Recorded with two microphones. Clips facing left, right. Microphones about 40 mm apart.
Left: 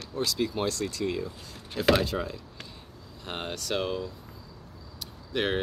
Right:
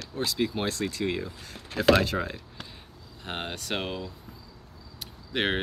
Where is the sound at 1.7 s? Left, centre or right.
Right.